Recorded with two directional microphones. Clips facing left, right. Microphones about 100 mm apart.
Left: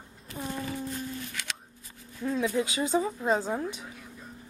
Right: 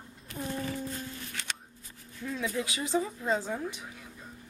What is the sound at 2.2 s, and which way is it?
Speech, 30° left (ahead or behind).